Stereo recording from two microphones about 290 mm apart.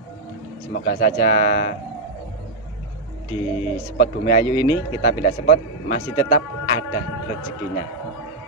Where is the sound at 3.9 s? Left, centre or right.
Left.